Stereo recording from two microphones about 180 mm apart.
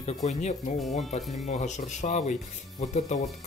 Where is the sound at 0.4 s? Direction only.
40° left (ahead or behind).